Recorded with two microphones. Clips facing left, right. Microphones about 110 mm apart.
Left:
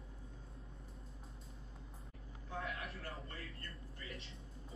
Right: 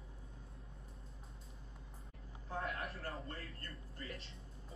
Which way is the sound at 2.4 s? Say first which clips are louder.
Right 2 dB; 35° right (ahead or behind).